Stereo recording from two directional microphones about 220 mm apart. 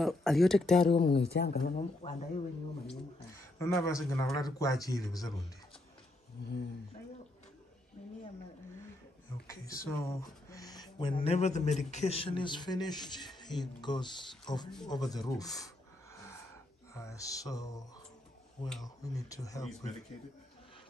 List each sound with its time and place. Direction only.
0.0 s speech: centre (ahead or behind)
0.8 s speech: 25° left (ahead or behind)
1.1 s speech: 50° left (ahead or behind); by 2.4 s 35° left (ahead or behind)
3.3 s speech: 15° left (ahead or behind)
6.4 s speech: 50° left (ahead or behind)
9.8 s speech: 15° left (ahead or behind)
16.9 s speech: 15° left (ahead or behind)